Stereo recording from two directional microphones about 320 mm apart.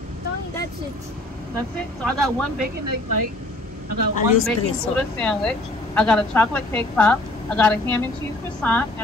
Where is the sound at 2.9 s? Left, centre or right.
Right.